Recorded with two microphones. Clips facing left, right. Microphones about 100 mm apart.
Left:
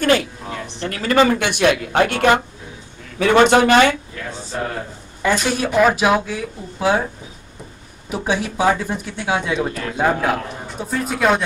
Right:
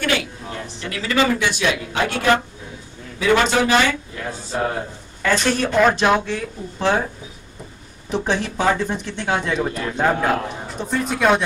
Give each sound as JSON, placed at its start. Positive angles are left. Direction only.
{"t": 0.0, "sound": "speech", "side_deg": 40}
{"t": 1.4, "sound": "speech", "side_deg": 55}
{"t": 4.5, "sound": "a man's voice", "side_deg": -10}
{"t": 5.2, "sound": "speech", "side_deg": 10}
{"t": 8.1, "sound": "speech", "side_deg": 5}